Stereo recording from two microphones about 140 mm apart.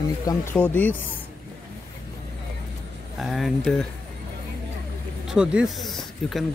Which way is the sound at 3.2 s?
Centre (ahead or behind).